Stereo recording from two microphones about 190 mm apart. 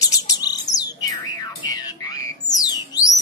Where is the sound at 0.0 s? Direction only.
20° left (ahead or behind).